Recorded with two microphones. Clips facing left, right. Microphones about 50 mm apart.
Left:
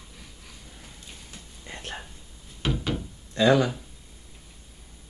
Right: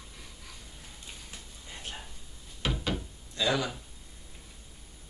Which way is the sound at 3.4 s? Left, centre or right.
Left.